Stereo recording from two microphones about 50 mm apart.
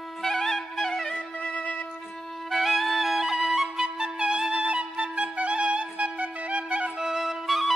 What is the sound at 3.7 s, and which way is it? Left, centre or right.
Flute, centre.